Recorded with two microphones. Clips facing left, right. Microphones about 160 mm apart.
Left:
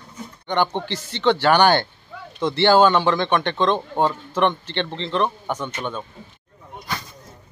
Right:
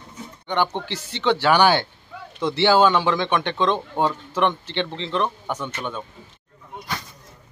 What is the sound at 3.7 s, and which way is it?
Speech, 20° left (ahead or behind).